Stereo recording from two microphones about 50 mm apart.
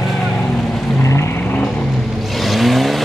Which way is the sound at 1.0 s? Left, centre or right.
Left.